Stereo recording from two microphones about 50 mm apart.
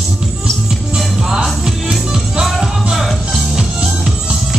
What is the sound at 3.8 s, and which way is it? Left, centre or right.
Music, centre.